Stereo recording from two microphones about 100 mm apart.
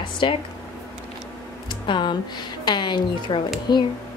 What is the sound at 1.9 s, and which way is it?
A woman's voice, 50° left (ahead or behind).